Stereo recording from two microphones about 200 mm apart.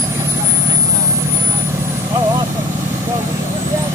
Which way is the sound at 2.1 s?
20° right (ahead or behind).